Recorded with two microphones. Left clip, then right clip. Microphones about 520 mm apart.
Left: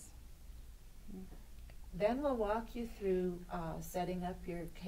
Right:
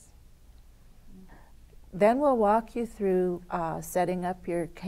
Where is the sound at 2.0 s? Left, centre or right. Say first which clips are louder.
Right 13 dB; right.